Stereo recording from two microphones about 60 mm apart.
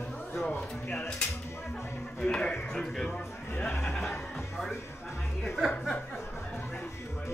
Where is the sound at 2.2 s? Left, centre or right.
Centre.